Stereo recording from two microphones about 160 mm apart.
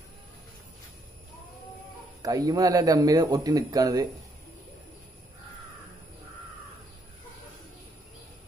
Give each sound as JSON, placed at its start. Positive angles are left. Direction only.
{"t": 2.2, "sound": "speech", "side_deg": -25}